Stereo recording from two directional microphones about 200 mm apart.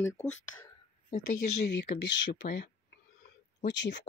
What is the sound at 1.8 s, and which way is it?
Speech, 55° left (ahead or behind).